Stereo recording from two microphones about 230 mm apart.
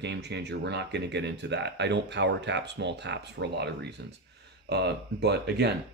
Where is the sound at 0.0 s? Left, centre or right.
Right.